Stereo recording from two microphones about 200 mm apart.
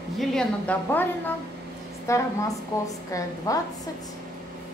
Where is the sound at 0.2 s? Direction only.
5° left (ahead or behind).